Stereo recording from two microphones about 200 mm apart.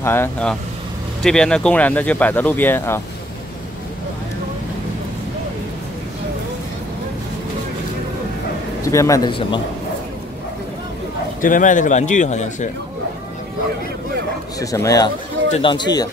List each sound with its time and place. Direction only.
0.0 s speech: 10° left (ahead or behind)
8.8 s a man's voice: 15° left (ahead or behind)
11.4 s a man's voice: 40° left (ahead or behind)
14.6 s a man's voice: 15° left (ahead or behind)